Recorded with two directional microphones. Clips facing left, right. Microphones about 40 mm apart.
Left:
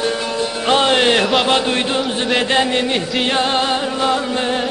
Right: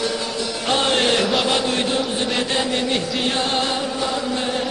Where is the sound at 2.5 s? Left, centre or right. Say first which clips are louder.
Left 5 dB; left.